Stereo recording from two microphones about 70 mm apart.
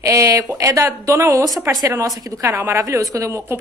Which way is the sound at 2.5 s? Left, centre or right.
Right.